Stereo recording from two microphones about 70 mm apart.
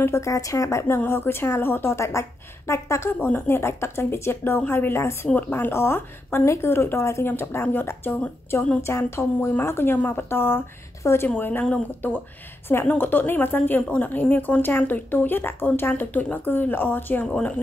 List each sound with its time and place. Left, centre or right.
0.0 s a woman's voice: left
11.2 s speech: left
17.3 s speech: centre